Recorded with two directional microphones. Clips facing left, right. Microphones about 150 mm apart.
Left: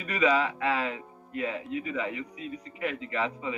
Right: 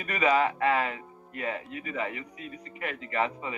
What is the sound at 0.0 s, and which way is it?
Speech, 50° right (ahead or behind).